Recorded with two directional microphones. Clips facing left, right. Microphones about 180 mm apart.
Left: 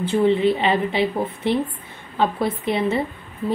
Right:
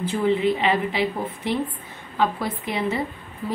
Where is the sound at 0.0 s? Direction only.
30° left (ahead or behind).